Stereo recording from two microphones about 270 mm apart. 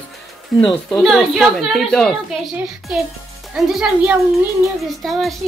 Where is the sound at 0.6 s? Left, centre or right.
Centre.